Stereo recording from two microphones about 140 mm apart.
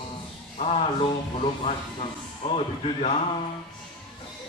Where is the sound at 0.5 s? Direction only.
50° left (ahead or behind).